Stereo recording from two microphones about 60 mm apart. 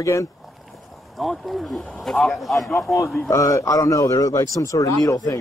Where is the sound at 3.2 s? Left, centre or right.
Left.